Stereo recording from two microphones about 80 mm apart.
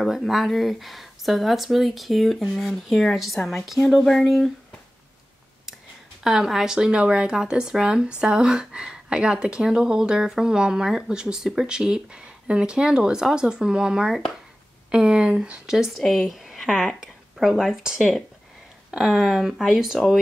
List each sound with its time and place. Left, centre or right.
0.0 s speech: centre
6.2 s speech: centre